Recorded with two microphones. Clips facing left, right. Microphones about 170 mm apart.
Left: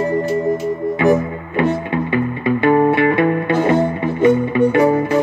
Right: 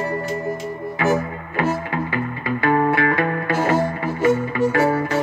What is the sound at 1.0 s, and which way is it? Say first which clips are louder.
Music: left 5 dB; 25° left (ahead or behind).